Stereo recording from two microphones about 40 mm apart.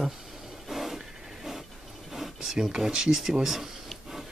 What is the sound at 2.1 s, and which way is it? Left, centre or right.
Speech, centre.